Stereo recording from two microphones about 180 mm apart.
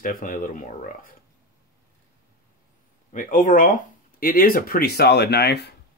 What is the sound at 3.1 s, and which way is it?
Speech, 45° left (ahead or behind).